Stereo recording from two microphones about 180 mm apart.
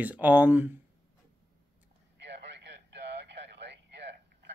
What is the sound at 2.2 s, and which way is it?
Radio, 75° right (ahead or behind).